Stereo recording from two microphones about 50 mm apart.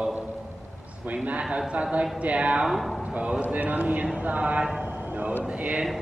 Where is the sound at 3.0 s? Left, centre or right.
Right.